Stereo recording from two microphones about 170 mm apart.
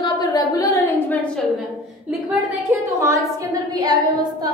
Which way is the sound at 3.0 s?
20° right (ahead or behind).